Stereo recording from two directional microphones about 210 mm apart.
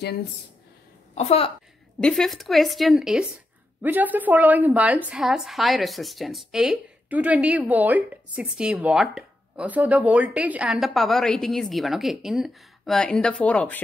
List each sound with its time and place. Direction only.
1.1 s a woman's voice: 30° left (ahead or behind)
2.0 s a woman's voice: 5° left (ahead or behind)